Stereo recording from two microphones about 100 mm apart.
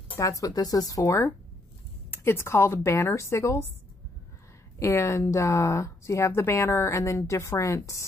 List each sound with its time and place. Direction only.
0.2 s a woman's voice: 35° left (ahead or behind)
4.7 s a woman's voice: 30° left (ahead or behind)